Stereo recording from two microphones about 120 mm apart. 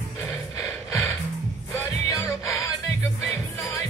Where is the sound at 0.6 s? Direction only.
25° left (ahead or behind).